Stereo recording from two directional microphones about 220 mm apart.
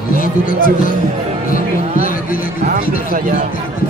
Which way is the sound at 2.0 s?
40° left (ahead or behind).